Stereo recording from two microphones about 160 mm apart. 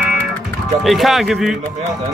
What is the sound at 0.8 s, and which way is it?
Speech, centre (ahead or behind).